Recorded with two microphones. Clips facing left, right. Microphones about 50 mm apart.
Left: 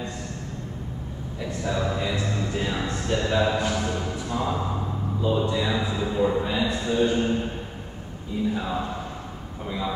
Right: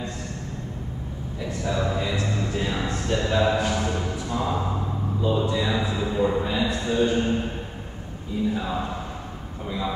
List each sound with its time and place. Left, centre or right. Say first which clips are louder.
1.4 s music: right 1 dB; centre
8.5 s a man's voice: even; centre